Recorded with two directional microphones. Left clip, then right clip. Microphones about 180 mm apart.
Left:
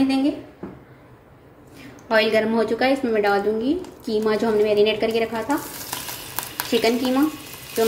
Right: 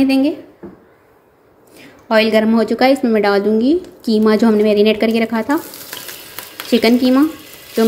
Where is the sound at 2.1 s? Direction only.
40° right (ahead or behind).